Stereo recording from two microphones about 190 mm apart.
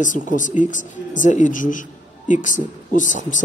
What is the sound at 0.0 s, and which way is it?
A woman's voice, 45° left (ahead or behind).